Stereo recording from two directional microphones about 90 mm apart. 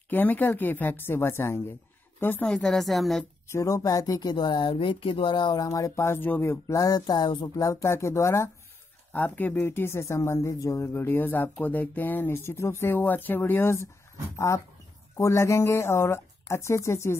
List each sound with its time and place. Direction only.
0.1 s a woman's voice: 20° left (ahead or behind)
2.4 s a woman's voice: 5° left (ahead or behind)
3.4 s speech: 35° left (ahead or behind); by 5.7 s 55° left (ahead or behind)
5.7 s speech: 35° left (ahead or behind)
6.8 s a sound: 50° left (ahead or behind)
7.5 s speech: 35° left (ahead or behind)
9.1 s speech: 20° left (ahead or behind)
15.1 s speech: 35° left (ahead or behind)